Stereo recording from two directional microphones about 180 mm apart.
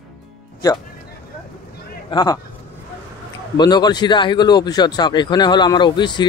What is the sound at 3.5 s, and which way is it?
Speech, 25° left (ahead or behind).